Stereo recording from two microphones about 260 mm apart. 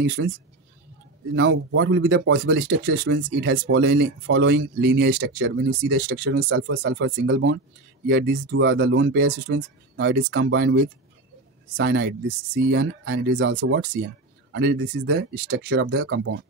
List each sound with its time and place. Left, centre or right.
0.2 s speech: right